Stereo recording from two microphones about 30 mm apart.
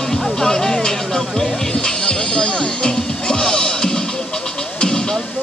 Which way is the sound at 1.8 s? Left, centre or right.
Left.